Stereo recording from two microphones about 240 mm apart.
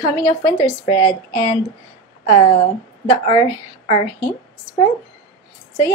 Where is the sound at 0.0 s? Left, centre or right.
Centre.